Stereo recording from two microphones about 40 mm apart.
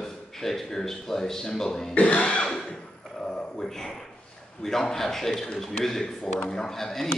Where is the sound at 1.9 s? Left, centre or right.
Left.